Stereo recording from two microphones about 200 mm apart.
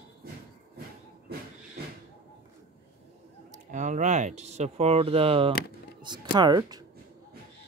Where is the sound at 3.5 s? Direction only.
40° right (ahead or behind); by 6.8 s 20° right (ahead or behind).